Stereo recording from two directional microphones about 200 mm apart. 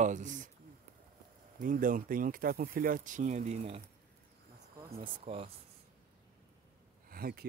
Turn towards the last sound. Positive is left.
turn(degrees=-50)  # may be behind; listen again after turning